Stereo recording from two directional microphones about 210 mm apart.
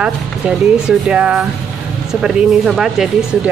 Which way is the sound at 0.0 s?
5° right (ahead or behind).